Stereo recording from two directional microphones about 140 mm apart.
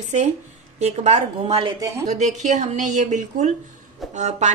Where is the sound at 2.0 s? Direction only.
55° right (ahead or behind).